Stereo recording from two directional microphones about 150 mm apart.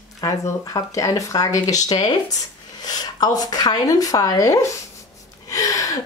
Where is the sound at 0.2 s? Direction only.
20° left (ahead or behind).